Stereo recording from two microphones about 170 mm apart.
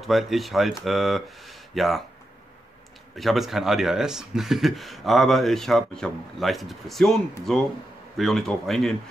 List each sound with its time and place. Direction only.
0.0 s speech: centre (ahead or behind)
3.2 s speech: centre (ahead or behind)